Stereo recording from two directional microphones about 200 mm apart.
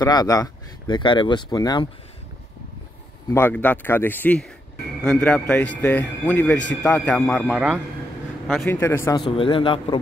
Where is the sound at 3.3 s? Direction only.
10° left (ahead or behind).